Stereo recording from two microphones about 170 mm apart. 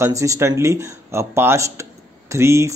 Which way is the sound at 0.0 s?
20° right (ahead or behind).